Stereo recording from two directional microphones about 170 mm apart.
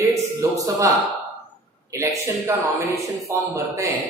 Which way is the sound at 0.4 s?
20° right (ahead or behind).